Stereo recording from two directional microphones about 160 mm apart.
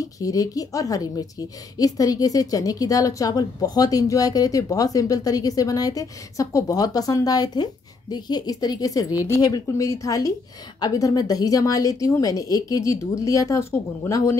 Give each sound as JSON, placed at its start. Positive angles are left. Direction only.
{"t": 0.0, "sound": "a woman's voice", "side_deg": 20}